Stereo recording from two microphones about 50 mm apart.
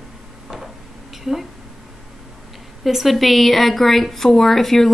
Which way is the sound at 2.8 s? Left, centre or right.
Centre.